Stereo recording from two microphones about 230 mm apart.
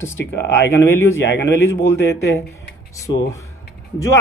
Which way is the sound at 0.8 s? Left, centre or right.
Centre.